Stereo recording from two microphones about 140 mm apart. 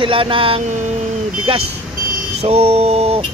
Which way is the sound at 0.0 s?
40° right (ahead or behind).